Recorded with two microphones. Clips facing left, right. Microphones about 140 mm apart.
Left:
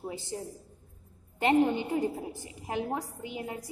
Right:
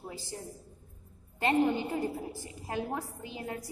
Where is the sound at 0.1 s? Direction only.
20° left (ahead or behind).